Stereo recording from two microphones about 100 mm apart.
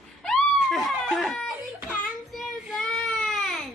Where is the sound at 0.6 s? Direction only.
5° left (ahead or behind).